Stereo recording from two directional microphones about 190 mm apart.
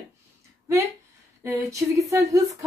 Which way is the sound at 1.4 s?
15° right (ahead or behind).